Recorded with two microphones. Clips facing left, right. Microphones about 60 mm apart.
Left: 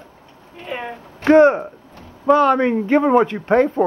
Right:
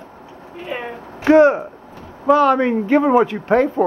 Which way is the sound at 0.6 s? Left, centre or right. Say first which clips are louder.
Right 1 dB; centre.